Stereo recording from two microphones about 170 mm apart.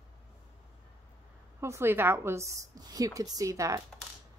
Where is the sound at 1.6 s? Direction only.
15° right (ahead or behind).